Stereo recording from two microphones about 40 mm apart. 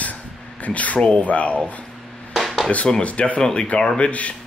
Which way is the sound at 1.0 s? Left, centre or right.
Left.